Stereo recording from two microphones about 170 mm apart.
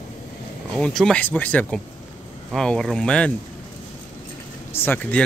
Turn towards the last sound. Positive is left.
turn(degrees=10)  # may be behind; listen again after turning